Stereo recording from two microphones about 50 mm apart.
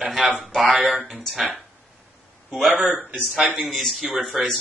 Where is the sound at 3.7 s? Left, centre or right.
Centre.